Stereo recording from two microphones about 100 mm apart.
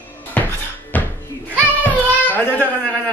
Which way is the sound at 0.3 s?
15° left (ahead or behind).